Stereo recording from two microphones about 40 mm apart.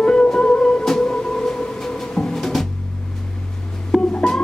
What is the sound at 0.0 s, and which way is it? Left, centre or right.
Music, centre.